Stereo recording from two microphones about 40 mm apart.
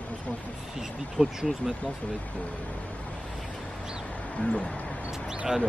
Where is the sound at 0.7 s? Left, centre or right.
Centre.